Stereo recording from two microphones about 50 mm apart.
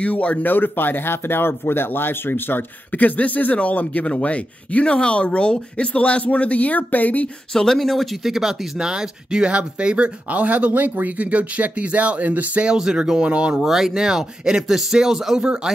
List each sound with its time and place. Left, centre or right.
0.0 s speech: left
7.5 s speech: centre; by 12.6 s right
12.6 s speech: centre
13.6 s speech: centre